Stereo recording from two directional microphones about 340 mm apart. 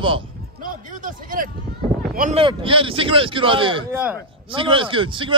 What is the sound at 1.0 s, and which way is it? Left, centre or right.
A man's voice, right.